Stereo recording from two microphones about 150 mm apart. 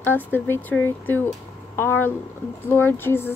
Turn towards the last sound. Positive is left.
turn(degrees=15)  # may be behind; listen again after turning